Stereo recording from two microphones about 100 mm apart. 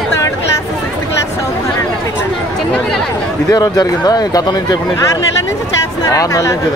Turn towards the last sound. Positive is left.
turn(degrees=30)  # may be behind; listen again after turning